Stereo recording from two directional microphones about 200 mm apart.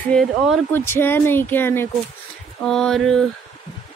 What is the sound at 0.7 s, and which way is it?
Speech, 10° left (ahead or behind).